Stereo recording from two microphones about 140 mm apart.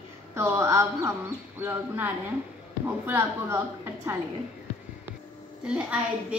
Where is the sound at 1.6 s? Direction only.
15° right (ahead or behind).